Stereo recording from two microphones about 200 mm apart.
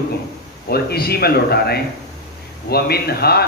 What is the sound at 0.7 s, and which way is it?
A man's voice, 50° left (ahead or behind).